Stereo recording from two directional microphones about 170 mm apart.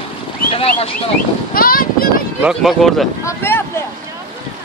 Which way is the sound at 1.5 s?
60° left (ahead or behind).